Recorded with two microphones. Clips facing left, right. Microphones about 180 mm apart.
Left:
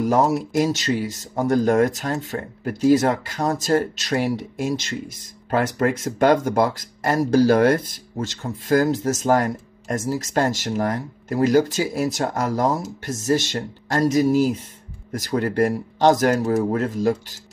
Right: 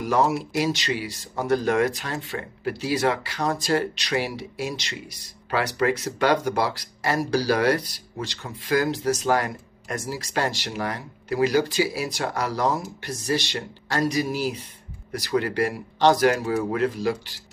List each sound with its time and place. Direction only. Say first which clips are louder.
0.0 s speech: left 3 dB; 45° left (ahead or behind)